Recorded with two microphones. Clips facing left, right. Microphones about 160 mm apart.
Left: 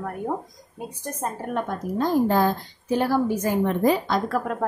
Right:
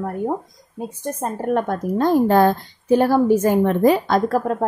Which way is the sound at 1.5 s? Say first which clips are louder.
Right 8 dB; 60° right (ahead or behind).